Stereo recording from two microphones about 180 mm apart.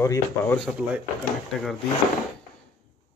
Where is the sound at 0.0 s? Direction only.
15° left (ahead or behind).